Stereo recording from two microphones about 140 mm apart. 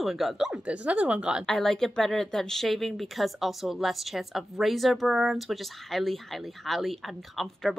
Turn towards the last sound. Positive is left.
turn(degrees=0)  # may be behind; listen again after turning